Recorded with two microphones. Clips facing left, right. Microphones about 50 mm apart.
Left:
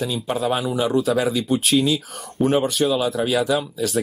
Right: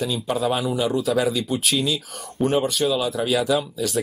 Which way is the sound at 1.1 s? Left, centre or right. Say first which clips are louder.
Left 2 dB; left.